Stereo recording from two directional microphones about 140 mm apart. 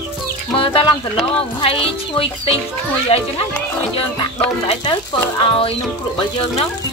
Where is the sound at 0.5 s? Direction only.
40° left (ahead or behind).